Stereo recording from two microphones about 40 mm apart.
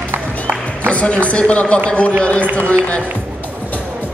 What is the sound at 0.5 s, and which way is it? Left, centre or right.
Music, right.